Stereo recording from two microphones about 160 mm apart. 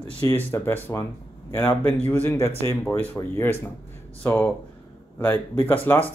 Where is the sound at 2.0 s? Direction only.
15° left (ahead or behind).